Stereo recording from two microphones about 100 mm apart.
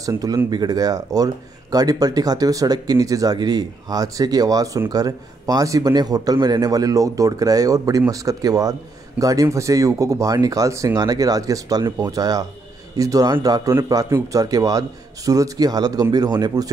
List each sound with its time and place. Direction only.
0.0 s speech: 35° right (ahead or behind)